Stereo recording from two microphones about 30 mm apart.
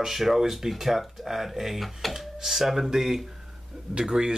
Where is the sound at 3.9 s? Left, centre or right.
Right.